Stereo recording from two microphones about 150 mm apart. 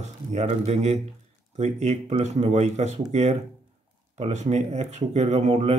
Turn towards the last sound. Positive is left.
turn(degrees=-45)  # may be behind; listen again after turning